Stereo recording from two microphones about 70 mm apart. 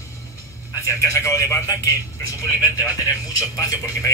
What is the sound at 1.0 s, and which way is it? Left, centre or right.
Speech, left.